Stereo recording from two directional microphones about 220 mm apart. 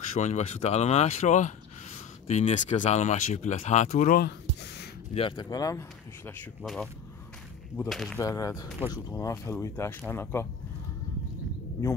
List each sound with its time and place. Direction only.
0.1 s speech: 35° left (ahead or behind)
5.1 s speech: 25° left (ahead or behind)
6.6 s speech: centre (ahead or behind)
7.9 s speech: centre (ahead or behind)
8.2 s speech: 15° left (ahead or behind)
8.6 s speech: centre (ahead or behind)
8.9 s speech: 15° left (ahead or behind)